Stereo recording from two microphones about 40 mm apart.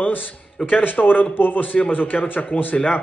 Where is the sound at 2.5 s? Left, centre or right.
Centre.